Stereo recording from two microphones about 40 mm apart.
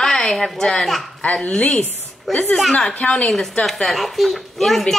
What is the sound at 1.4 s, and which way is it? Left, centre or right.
Speech, left.